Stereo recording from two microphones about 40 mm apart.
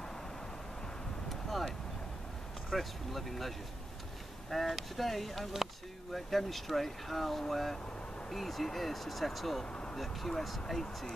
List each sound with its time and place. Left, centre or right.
1.3 s vehicle: centre
2.7 s speech: centre
9.7 s vehicle: left
9.9 s speech: centre